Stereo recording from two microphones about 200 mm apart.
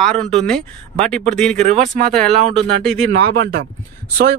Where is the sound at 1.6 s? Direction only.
40° right (ahead or behind).